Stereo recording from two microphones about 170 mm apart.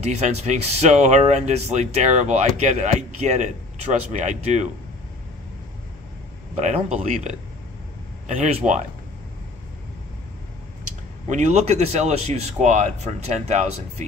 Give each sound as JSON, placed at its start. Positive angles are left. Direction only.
{"t": 0.0, "sound": "speech", "side_deg": -40}
{"t": 6.5, "sound": "speech", "side_deg": -45}
{"t": 11.2, "sound": "speech", "side_deg": -45}